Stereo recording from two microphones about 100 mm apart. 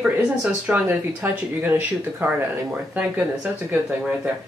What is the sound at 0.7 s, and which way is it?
Speech, 15° right (ahead or behind).